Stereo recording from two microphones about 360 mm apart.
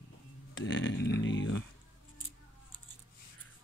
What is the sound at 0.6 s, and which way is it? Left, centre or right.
Speech, left.